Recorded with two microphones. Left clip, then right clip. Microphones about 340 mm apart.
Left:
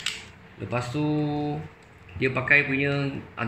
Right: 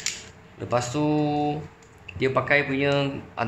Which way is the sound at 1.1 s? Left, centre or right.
Right.